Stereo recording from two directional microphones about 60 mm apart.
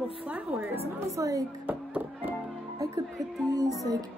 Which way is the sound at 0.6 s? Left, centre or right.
Right.